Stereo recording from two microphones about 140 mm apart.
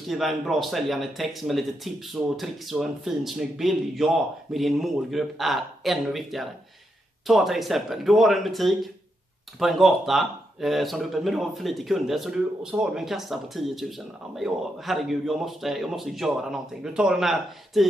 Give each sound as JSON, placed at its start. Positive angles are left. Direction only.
{"t": 0.1, "sound": "speech", "side_deg": 0}